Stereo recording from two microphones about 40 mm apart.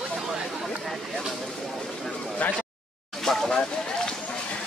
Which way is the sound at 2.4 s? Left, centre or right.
Left.